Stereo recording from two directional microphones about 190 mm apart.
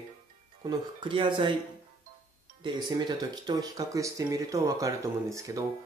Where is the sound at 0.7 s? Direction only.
25° right (ahead or behind).